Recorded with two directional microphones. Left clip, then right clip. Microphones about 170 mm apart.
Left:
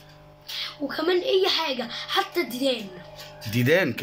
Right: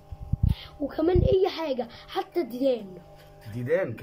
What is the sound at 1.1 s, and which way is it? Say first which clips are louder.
Speech: left 2 dB; 35° right (ahead or behind).